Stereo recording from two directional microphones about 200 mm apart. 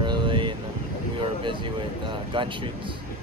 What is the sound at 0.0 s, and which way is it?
Vehicle, 25° right (ahead or behind).